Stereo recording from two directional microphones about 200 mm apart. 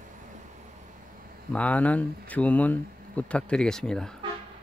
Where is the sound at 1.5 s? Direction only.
5° left (ahead or behind).